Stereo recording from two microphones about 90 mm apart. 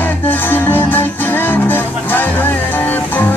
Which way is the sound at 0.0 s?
20° left (ahead or behind).